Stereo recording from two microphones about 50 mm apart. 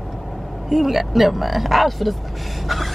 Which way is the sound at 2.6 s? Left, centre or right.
Centre.